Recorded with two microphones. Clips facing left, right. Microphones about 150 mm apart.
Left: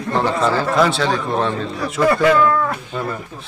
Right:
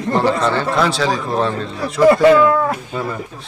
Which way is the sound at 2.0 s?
20° right (ahead or behind).